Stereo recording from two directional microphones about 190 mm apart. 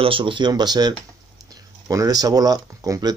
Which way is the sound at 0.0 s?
25° right (ahead or behind).